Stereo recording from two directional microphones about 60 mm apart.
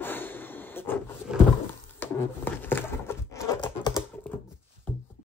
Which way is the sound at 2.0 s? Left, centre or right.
Left.